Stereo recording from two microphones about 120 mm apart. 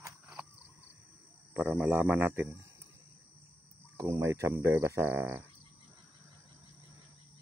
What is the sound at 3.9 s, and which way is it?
Speech, 25° right (ahead or behind).